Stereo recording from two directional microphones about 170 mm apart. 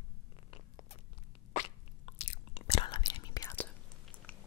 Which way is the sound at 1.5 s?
40° left (ahead or behind).